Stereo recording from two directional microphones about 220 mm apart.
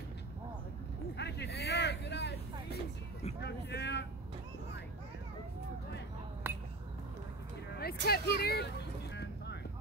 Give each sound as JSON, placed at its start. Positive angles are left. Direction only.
{"t": 1.1, "sound": "vehicle", "side_deg": 50}
{"t": 3.3, "sound": "a sound", "side_deg": 50}
{"t": 6.4, "sound": "chink", "side_deg": -10}
{"t": 7.7, "sound": "speech", "side_deg": 45}
{"t": 9.1, "sound": "vehicle", "side_deg": 50}